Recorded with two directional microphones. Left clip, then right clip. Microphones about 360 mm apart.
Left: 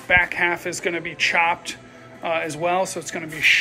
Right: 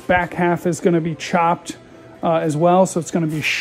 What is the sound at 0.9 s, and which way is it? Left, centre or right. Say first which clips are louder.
Speech: right 7 dB; right.